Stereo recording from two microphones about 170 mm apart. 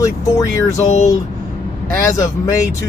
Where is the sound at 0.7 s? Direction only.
45° left (ahead or behind).